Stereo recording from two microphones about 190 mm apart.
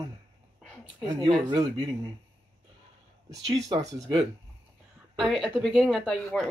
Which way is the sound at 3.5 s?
25° right (ahead or behind).